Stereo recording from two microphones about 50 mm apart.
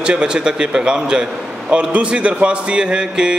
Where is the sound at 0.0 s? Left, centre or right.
Centre.